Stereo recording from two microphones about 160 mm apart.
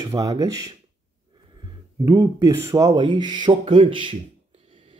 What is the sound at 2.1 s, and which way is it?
Speech, 20° right (ahead or behind).